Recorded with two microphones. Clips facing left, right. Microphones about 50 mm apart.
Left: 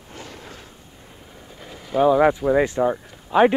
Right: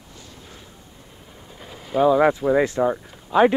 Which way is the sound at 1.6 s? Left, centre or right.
Centre.